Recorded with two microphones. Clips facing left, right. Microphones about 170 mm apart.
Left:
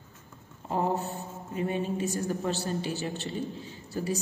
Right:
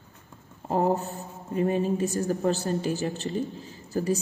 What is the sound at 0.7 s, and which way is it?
Speech, 40° right (ahead or behind).